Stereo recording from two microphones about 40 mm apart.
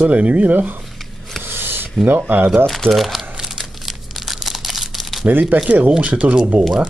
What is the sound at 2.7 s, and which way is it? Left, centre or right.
Speech, centre.